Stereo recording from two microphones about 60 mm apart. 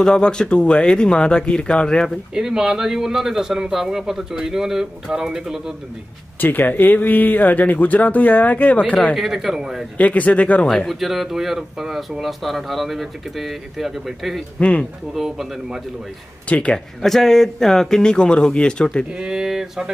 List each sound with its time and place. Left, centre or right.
0.0 s speech: centre
2.3 s a man's voice: centre
6.4 s speech: left
9.1 s speech: centre
9.9 s speech: left
10.9 s speech: centre
14.6 s speech: left
15.1 s a man's voice: centre
16.4 s speech: centre
17.0 s speech: centre
19.1 s a man's voice: centre